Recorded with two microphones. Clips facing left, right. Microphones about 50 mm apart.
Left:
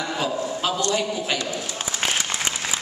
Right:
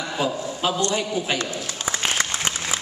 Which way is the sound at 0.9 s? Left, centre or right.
Centre.